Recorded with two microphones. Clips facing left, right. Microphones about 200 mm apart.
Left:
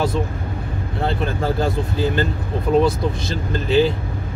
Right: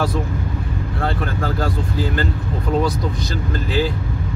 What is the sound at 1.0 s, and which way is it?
Speech, 25° left (ahead or behind).